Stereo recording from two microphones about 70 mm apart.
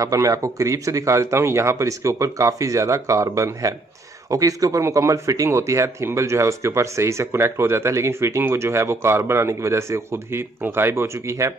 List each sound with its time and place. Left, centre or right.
0.0 s speech: right